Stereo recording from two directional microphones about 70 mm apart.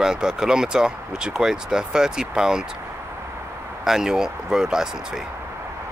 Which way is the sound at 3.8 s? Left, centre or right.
Centre.